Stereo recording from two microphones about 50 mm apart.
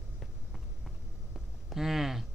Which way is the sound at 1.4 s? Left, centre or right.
Centre.